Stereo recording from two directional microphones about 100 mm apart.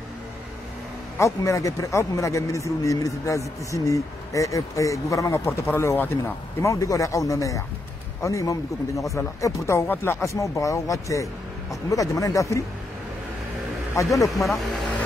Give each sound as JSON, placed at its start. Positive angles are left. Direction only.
{"t": 1.1, "sound": "a man's voice", "side_deg": 30}
{"t": 13.9, "sound": "a man's voice", "side_deg": 35}